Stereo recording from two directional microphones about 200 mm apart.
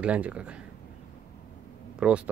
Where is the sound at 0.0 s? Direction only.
5° right (ahead or behind).